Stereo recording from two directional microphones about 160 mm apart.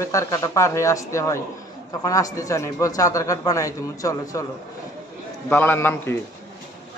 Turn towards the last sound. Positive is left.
turn(degrees=15)  # may be behind; listen again after turning